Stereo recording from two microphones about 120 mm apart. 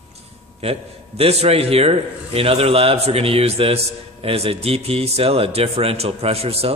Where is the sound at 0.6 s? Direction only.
55° right (ahead or behind).